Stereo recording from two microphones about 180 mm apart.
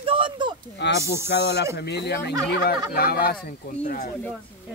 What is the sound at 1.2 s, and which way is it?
Speech, 75° left (ahead or behind).